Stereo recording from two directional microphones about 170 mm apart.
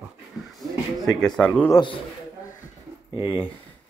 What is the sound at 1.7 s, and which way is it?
Speech, 30° left (ahead or behind).